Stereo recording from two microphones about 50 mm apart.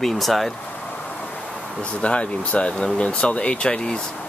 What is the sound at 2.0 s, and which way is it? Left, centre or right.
Speech, left.